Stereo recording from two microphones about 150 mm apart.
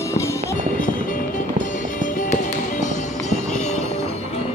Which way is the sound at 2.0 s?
60° left (ahead or behind).